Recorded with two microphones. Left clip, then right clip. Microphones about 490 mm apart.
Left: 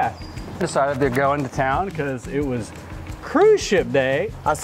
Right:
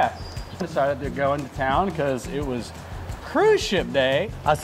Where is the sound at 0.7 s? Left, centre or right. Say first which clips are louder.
Left 4 dB; left.